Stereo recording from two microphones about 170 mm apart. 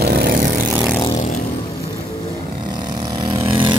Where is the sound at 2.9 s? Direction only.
25° right (ahead or behind).